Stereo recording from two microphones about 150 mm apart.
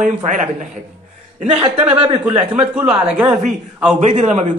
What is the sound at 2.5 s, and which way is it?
Speech, 10° right (ahead or behind).